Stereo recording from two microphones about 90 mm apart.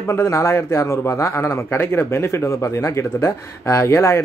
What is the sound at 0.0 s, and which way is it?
A man's voice, 30° left (ahead or behind).